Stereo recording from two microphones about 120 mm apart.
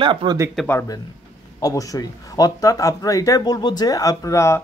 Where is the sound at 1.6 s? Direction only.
30° left (ahead or behind).